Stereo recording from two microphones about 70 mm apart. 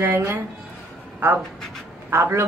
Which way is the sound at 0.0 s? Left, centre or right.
Right.